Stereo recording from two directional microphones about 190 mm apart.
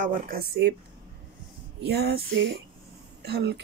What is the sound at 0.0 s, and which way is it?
Speech, 50° right (ahead or behind).